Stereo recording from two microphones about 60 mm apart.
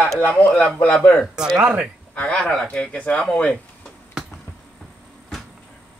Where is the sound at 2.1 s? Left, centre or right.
Centre.